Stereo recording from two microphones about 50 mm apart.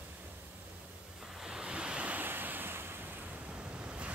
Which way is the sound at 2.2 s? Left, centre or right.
Right.